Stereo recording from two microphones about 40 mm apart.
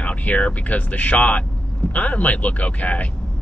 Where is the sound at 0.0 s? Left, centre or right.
Left.